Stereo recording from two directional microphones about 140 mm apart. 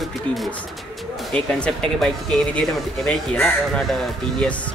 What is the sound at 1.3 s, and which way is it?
Speech, 5° left (ahead or behind).